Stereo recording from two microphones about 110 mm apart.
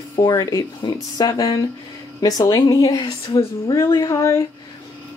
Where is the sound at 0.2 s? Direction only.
35° left (ahead or behind).